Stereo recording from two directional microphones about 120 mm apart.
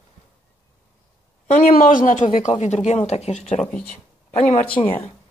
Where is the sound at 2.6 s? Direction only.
65° left (ahead or behind).